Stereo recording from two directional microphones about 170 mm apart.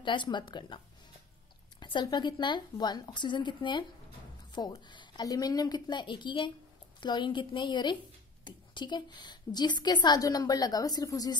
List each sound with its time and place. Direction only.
0.0 s speech: 25° left (ahead or behind)
1.8 s speech: 25° left (ahead or behind)